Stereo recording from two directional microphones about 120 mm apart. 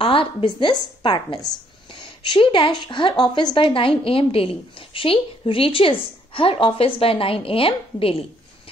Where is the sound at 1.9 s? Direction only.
45° left (ahead or behind).